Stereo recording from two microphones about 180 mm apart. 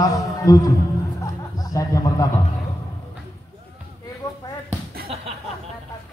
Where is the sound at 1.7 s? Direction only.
20° left (ahead or behind).